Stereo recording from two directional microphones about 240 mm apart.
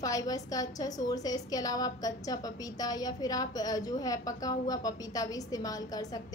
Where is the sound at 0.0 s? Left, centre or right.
Centre.